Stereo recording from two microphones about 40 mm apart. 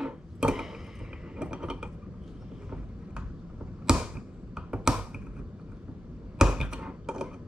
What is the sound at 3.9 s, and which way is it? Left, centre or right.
Finger snapping, centre.